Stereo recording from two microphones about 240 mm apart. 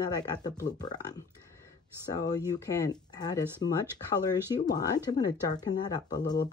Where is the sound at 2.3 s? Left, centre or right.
Centre.